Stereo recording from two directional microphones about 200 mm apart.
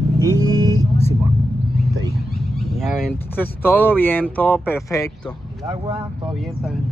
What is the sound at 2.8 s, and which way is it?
Speech, 5° left (ahead or behind).